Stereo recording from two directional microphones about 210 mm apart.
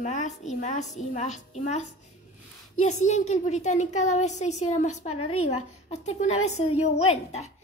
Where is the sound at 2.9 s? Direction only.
35° left (ahead or behind).